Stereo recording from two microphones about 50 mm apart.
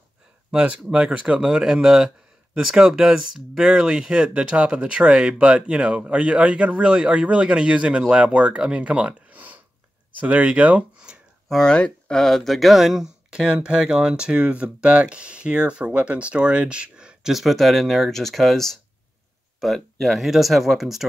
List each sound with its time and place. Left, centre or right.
0.5 s speech: right
11.4 s speech: centre
11.7 s speech: centre
17.3 s speech: centre